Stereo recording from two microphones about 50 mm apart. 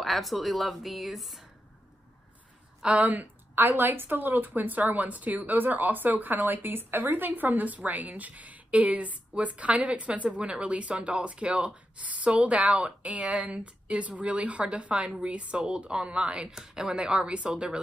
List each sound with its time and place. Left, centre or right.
0.0 s a woman's voice: centre
2.8 s a woman's voice: right
3.5 s a woman's voice: right
16.4 s a woman's voice: centre